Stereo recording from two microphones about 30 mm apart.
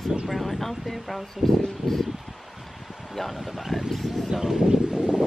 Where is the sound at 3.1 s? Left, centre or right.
Centre.